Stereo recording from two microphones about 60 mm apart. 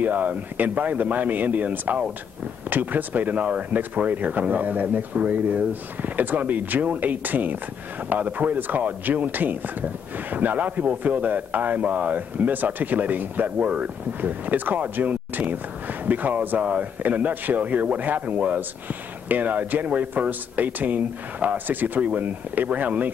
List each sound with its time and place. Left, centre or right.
0.0 s a man's voice: right